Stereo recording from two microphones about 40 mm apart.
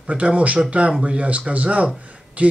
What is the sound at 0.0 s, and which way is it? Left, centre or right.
A man's voice, right.